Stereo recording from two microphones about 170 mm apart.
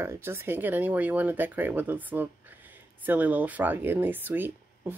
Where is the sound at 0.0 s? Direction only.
15° right (ahead or behind).